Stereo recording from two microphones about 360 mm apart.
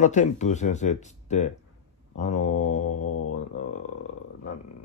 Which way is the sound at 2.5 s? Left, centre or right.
Left.